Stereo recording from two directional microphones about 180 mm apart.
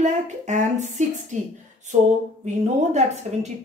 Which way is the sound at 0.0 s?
40° right (ahead or behind).